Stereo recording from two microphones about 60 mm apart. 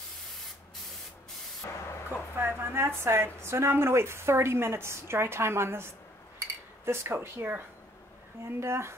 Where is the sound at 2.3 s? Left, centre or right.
Right.